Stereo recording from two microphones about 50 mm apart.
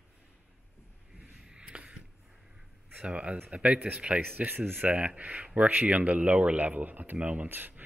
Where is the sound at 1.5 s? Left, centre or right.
Right.